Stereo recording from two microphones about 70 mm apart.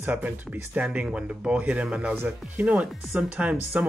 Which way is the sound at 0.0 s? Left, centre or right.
Right.